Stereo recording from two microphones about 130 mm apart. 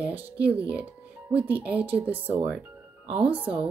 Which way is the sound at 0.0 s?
10° right (ahead or behind).